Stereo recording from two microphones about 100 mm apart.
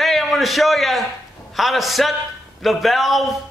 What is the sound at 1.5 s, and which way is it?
A man's voice, centre (ahead or behind).